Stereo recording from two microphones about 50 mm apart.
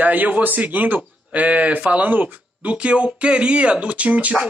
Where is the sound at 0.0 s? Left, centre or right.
Right.